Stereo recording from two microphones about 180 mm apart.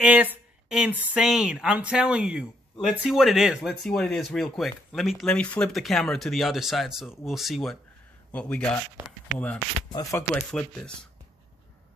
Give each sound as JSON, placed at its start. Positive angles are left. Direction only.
{"t": 0.0, "sound": "speech", "side_deg": -10}